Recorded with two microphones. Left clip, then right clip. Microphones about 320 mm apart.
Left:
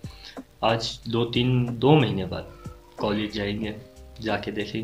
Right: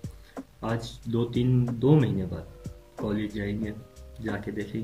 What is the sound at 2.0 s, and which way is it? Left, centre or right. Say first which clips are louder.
Speech: left 4 dB; left.